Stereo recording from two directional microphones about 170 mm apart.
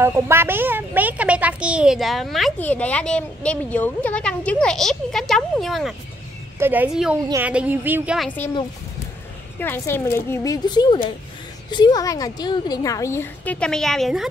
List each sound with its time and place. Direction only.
0.0 s a woman's voice: 15° right (ahead or behind); by 5.9 s centre (ahead or behind)
6.6 s speech: 10° right (ahead or behind)
9.6 s a woman's voice: 10° left (ahead or behind)